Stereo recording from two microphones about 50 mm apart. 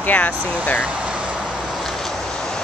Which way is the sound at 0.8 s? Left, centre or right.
Right.